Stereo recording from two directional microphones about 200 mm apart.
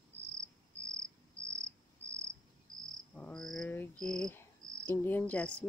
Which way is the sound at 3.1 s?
5° left (ahead or behind).